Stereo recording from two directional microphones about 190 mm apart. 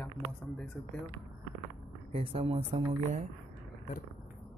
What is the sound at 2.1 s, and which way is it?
Speech, 30° right (ahead or behind).